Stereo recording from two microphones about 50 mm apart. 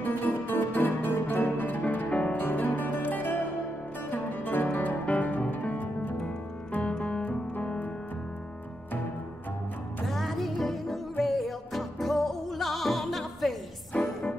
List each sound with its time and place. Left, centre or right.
0.0 s music: left
2.0 s music: left
2.3 s music: left
6.8 s music: left
10.0 s music: centre